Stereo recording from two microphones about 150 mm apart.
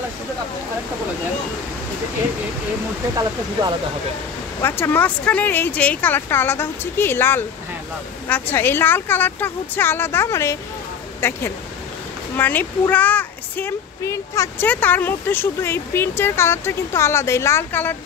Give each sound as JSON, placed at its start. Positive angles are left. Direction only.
{"t": 4.6, "sound": "speech", "side_deg": 15}